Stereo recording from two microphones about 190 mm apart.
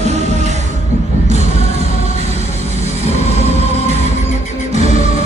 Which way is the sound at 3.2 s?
35° right (ahead or behind).